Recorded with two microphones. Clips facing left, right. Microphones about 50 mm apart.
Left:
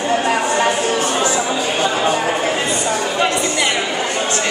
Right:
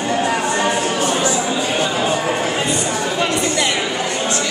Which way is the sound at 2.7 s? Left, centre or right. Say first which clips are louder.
Left 1 dB; left.